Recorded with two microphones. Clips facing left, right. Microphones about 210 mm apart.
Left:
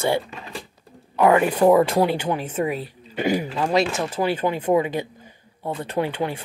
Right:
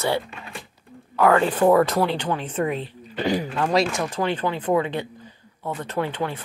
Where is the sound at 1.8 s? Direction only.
25° left (ahead or behind).